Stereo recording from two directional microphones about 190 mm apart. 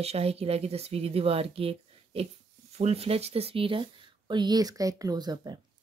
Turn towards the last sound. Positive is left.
turn(degrees=-20)  # may be behind; listen again after turning